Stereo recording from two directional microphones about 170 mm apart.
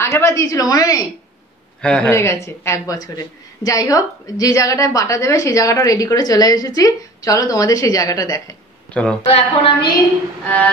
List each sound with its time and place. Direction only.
0.0 s speech: 15° left (ahead or behind)
1.8 s speech: 5° left (ahead or behind)
9.2 s a woman's voice: 35° left (ahead or behind)
10.4 s a sound: 10° left (ahead or behind)